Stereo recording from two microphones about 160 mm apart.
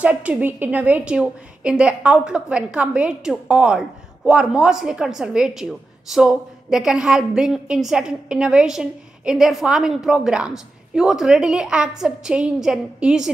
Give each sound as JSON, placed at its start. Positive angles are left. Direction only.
{"t": 0.0, "sound": "a woman's voice", "side_deg": -10}